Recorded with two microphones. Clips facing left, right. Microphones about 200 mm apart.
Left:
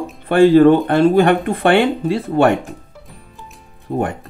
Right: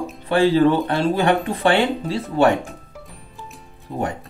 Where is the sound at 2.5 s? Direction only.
Centre (ahead or behind).